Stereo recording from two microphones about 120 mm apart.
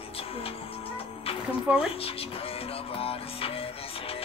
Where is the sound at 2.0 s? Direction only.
50° left (ahead or behind).